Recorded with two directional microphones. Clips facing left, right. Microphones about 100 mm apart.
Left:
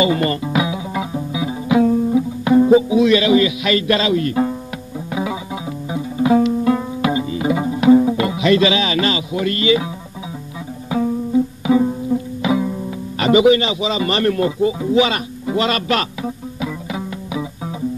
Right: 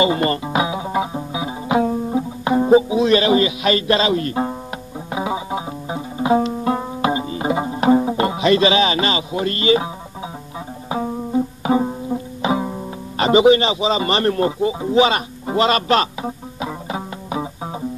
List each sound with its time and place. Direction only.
0.0 s music: 30° right (ahead or behind)
10.9 s music: 30° right (ahead or behind)
11.6 s music: 45° right (ahead or behind)
12.4 s music: 30° right (ahead or behind)
14.6 s a sound: 25° right (ahead or behind)